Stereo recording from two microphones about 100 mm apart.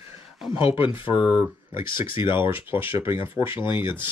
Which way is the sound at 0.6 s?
65° left (ahead or behind).